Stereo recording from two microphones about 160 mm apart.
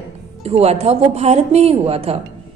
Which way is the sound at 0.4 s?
40° right (ahead or behind).